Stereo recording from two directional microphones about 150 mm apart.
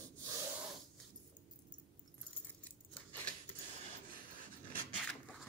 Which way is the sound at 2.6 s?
10° left (ahead or behind).